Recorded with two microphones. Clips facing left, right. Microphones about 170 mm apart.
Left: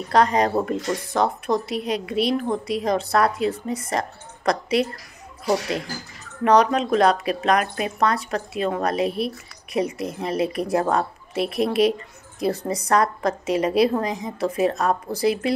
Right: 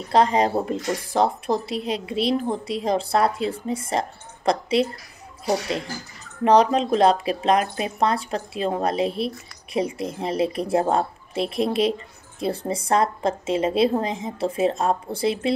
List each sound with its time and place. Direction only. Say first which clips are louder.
0.1 s speech: even; 25° right (ahead or behind)
6.4 s speech: right 1 dB; 30° right (ahead or behind)